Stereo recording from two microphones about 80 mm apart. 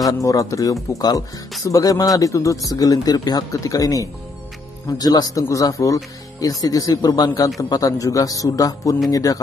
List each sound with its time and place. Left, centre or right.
0.2 s speech: left